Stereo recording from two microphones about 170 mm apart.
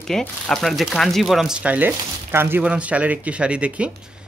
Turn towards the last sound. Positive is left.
turn(degrees=-5)  # may be behind; listen again after turning